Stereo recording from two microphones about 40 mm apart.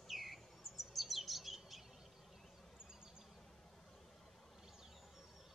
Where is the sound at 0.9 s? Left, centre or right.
Centre.